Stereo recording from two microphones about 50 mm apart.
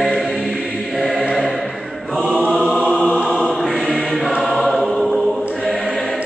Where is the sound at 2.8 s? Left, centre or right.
Left.